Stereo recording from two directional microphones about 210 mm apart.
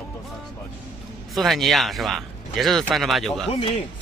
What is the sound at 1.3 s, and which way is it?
Speech, centre (ahead or behind).